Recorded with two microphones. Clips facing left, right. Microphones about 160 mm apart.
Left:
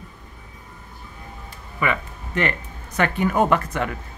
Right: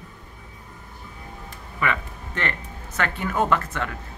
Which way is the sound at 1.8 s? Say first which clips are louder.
Left 2 dB; 15° left (ahead or behind).